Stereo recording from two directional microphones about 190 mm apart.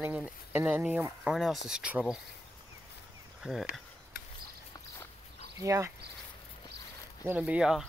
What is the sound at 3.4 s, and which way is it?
Speech, centre (ahead or behind).